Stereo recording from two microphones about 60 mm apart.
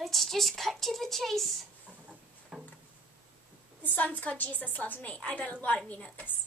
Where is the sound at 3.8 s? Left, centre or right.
Left.